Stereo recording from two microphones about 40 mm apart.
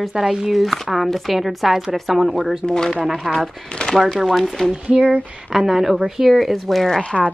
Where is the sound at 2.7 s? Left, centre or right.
Centre.